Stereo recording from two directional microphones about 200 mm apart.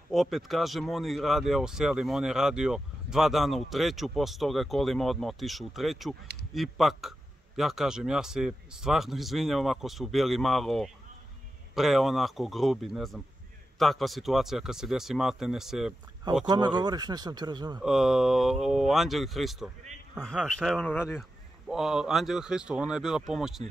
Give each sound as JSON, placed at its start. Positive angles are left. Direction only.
{"t": 0.1, "sound": "speech", "side_deg": 0}
{"t": 16.4, "sound": "speech", "side_deg": -20}
{"t": 17.7, "sound": "speech", "side_deg": -5}
{"t": 21.2, "sound": "speech", "side_deg": 0}